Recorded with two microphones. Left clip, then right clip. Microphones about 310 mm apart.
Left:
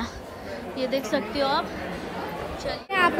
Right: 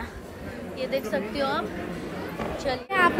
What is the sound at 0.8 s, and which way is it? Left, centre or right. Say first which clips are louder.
Speech: left 2 dB; centre.